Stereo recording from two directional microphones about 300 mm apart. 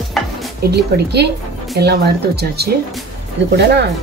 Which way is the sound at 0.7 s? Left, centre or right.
Right.